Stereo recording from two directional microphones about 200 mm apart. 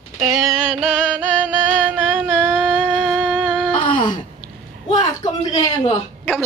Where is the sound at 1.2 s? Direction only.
10° right (ahead or behind).